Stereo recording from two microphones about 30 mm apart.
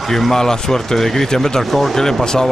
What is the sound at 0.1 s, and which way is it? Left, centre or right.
Speech, centre.